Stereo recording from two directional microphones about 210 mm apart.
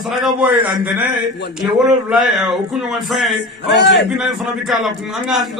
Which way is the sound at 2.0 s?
Centre (ahead or behind).